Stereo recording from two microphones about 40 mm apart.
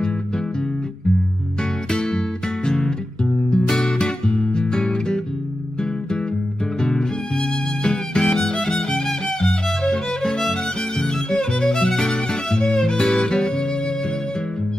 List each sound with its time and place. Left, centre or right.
1.9 s music: centre
6.8 s music: centre